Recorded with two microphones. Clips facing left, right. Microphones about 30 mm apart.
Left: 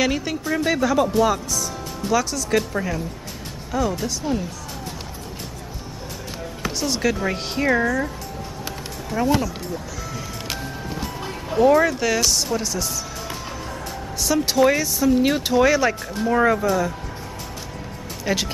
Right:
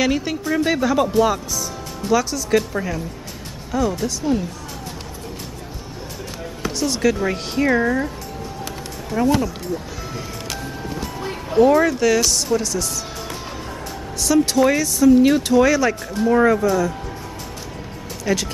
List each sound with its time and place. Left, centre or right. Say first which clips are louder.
0.0 s speech: right 2 dB; centre
6.6 s speech: right 3 dB; centre
9.1 s speech: right 2 dB; centre
11.2 s speech: right 2 dB; centre
14.2 s speech: right 2 dB; centre
18.2 s speech: right 2 dB; centre